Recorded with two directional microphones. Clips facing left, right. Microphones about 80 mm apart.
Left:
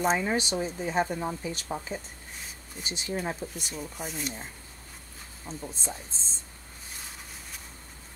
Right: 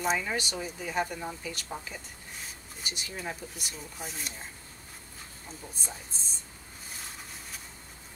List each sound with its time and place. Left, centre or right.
0.1 s speech: left
3.7 s speech: centre
5.5 s speech: left